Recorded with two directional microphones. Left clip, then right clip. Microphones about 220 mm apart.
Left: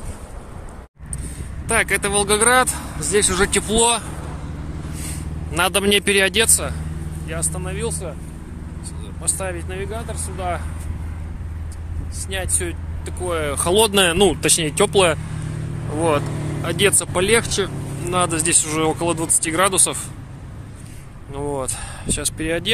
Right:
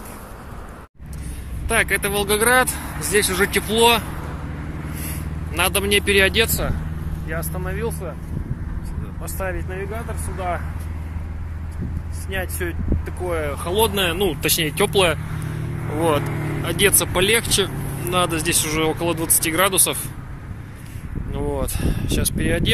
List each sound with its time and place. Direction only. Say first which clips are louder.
1.7 s speech: left 1 dB; 10° left (ahead or behind)
5.7 s speech: left 1 dB; 50° left (ahead or behind)
7.2 s speech: even; 10° right (ahead or behind)
9.2 s speech: left 1 dB; centre (ahead or behind)
12.3 s speech: left 1 dB; centre (ahead or behind)
13.3 s speech: left 2 dB; 25° left (ahead or behind)
13.7 s speech: left 4 dB; 50° left (ahead or behind)
14.4 s speech: left 2 dB; 15° left (ahead or behind)
16.3 s vehicle: right 2 dB; 30° left (ahead or behind)
16.6 s speech: even; 10° left (ahead or behind)
21.3 s speech: left 1 dB; 5° left (ahead or behind)